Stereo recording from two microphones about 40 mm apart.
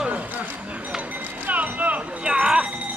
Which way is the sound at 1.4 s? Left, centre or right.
Right.